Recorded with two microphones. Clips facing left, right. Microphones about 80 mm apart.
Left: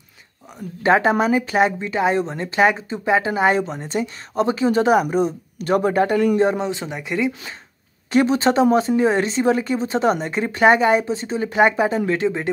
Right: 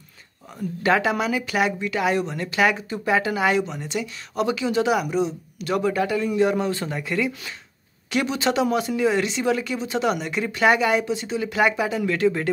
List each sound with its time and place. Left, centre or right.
0.8 s speech: left
6.3 s speech: left
8.1 s speech: left